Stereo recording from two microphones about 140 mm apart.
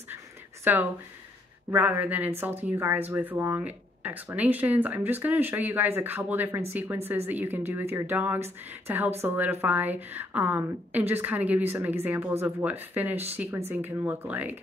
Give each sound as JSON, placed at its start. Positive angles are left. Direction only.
{"t": 0.7, "sound": "speech", "side_deg": -10}